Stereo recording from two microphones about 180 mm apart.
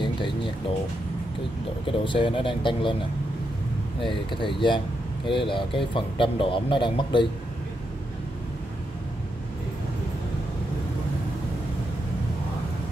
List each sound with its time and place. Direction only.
1.9 s speech: 30° left (ahead or behind)
4.0 s speech: 25° left (ahead or behind)